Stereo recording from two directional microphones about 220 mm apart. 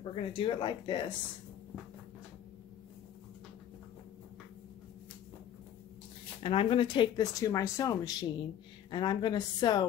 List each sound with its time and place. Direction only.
0.1 s speech: 25° left (ahead or behind)
6.4 s speech: 25° left (ahead or behind)